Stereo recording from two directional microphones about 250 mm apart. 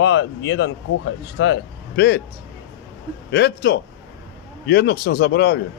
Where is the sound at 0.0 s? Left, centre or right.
Left.